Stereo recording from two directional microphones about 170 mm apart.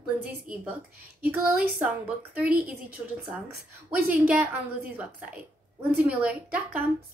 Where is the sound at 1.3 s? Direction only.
10° right (ahead or behind).